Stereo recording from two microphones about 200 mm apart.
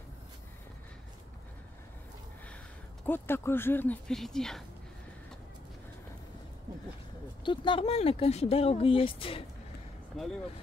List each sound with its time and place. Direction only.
3.1 s speech: 10° left (ahead or behind)
7.4 s speech: 25° left (ahead or behind)
10.1 s speech: 5° left (ahead or behind)